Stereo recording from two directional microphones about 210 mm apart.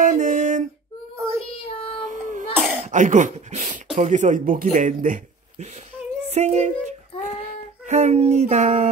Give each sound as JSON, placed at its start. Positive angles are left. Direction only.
{"t": 0.0, "sound": "a sound", "side_deg": -40}
{"t": 1.1, "sound": "child singing", "side_deg": -15}
{"t": 1.7, "sound": "child singing", "side_deg": 25}
{"t": 2.0, "sound": "child singing", "side_deg": -35}
{"t": 2.8, "sound": "speech", "side_deg": -35}
{"t": 6.3, "sound": "child singing", "side_deg": -35}